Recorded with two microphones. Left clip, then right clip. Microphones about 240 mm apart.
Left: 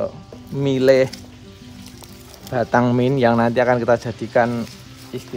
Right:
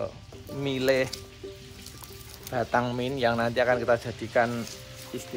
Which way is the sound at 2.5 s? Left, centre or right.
Left.